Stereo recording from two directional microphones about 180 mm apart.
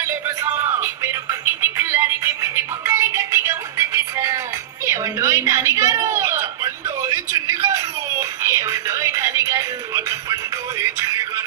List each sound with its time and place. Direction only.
0.0 s music: 15° right (ahead or behind)
4.8 s a sound: 15° right (ahead or behind)
10.8 s music: 15° right (ahead or behind)